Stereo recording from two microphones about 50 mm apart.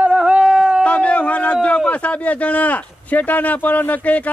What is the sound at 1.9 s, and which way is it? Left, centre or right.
Speech, left.